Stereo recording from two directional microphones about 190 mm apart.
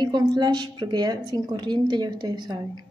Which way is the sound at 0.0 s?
20° right (ahead or behind).